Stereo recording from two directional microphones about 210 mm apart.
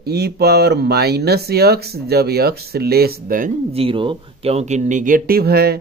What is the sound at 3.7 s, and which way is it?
Speech, 25° right (ahead or behind).